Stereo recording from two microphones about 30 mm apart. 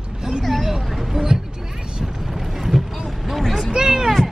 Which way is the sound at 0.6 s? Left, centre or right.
Centre.